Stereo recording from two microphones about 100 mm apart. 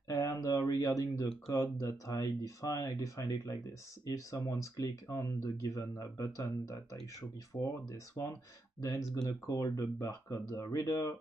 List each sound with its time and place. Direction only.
0.3 s speech: 35° left (ahead or behind)